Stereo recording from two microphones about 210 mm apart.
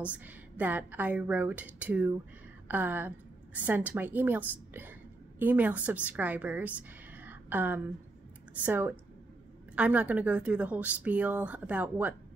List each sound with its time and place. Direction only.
0.0 s a woman's voice: 5° right (ahead or behind)